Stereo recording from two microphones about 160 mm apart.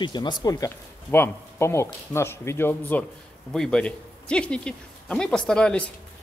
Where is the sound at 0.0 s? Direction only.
30° left (ahead or behind).